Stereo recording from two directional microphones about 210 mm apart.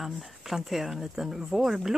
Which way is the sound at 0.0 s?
Centre (ahead or behind).